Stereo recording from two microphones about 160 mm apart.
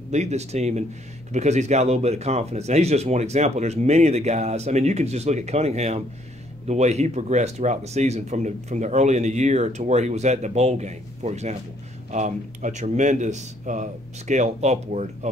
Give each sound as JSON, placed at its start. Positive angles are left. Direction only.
{"t": 0.1, "sound": "speech", "side_deg": -45}